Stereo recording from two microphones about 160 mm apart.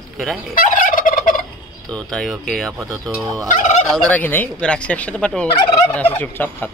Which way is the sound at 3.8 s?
Centre (ahead or behind).